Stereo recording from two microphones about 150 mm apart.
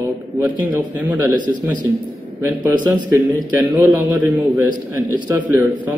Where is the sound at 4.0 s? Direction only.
10° right (ahead or behind).